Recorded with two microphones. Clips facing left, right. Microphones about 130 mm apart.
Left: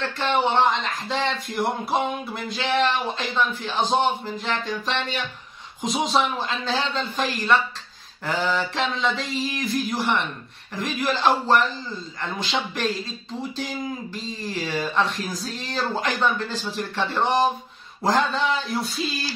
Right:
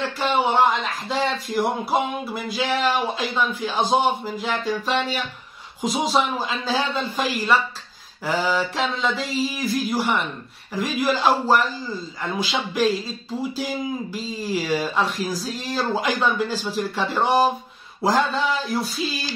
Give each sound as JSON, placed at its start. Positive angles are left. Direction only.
{"t": 0.0, "sound": "speech", "side_deg": -10}